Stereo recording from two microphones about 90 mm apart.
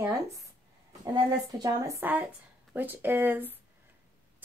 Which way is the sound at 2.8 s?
20° right (ahead or behind).